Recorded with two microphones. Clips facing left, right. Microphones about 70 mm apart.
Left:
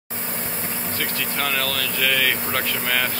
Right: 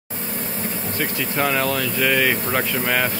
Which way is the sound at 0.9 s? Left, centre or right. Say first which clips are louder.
Right 4 dB; centre.